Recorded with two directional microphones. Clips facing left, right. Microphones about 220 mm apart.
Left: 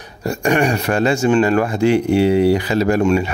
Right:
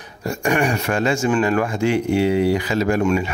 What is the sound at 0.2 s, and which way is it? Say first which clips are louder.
Speech: left 3 dB; 35° left (ahead or behind).